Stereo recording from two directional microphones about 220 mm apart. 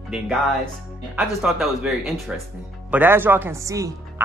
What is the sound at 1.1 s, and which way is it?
Speech, centre (ahead or behind).